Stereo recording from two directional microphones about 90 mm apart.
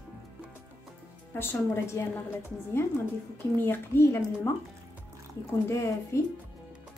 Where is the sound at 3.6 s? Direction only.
25° left (ahead or behind).